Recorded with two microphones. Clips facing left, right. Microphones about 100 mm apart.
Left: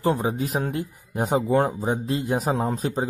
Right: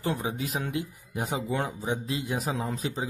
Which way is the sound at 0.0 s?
40° left (ahead or behind).